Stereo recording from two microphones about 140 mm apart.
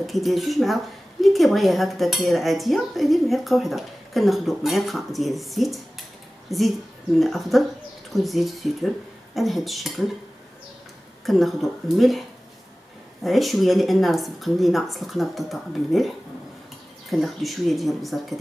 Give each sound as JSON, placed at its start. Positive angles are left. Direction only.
{"t": 0.0, "sound": "cutlery", "side_deg": 0}
{"t": 11.2, "sound": "cutlery", "side_deg": 0}
{"t": 13.2, "sound": "cutlery", "side_deg": 0}